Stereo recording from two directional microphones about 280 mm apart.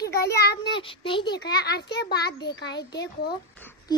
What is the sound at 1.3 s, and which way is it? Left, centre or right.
Speech, left.